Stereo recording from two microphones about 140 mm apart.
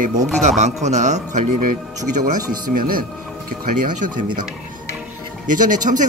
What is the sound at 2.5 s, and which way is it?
Speech, 90° right.